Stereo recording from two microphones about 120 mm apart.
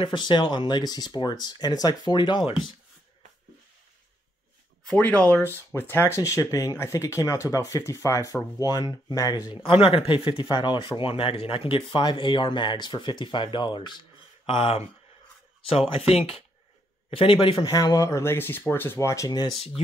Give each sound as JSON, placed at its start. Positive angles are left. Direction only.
{"t": 0.0, "sound": "speech", "side_deg": 40}
{"t": 4.8, "sound": "speech", "side_deg": 10}
{"t": 9.6, "sound": "speech", "side_deg": 50}
{"t": 17.6, "sound": "speech", "side_deg": 30}